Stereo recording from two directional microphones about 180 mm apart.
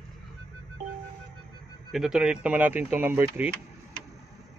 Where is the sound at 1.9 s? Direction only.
5° right (ahead or behind).